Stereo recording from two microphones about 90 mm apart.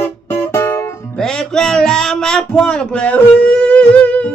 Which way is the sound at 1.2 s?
5° left (ahead or behind).